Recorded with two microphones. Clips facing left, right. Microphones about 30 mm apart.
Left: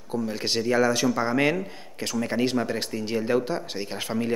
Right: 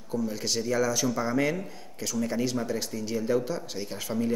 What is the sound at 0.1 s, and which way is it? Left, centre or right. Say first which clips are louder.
Speech: left 3 dB; left.